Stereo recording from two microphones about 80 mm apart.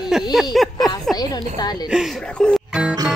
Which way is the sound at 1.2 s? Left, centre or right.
Left.